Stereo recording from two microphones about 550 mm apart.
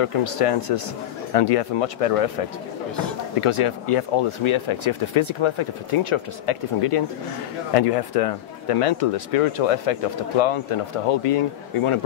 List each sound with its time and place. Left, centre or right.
0.0 s speech: left
3.3 s speech: left
7.7 s speech: left